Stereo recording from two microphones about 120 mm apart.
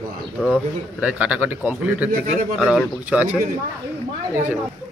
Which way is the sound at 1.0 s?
10° right (ahead or behind).